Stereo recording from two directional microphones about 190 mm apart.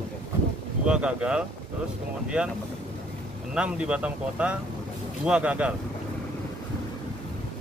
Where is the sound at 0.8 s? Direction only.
5° right (ahead or behind).